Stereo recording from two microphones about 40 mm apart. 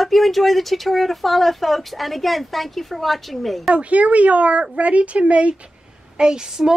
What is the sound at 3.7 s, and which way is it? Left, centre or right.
Speech, right.